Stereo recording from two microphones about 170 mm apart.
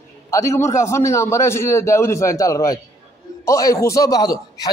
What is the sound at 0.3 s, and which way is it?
A man's voice, 15° left (ahead or behind).